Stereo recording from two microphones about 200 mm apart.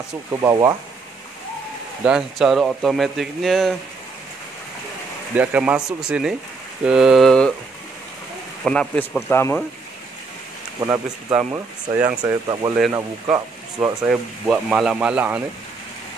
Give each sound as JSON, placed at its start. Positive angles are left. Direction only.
{"t": 0.4, "sound": "speech", "side_deg": -15}
{"t": 2.0, "sound": "speech", "side_deg": -5}
{"t": 5.3, "sound": "speech", "side_deg": -5}
{"t": 8.6, "sound": "speech", "side_deg": 5}
{"t": 10.8, "sound": "speech", "side_deg": -15}
{"t": 12.2, "sound": "speech", "side_deg": -20}
{"t": 14.0, "sound": "speech", "side_deg": 0}